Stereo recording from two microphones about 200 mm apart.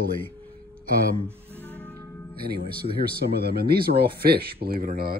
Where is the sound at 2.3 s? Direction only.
50° right (ahead or behind).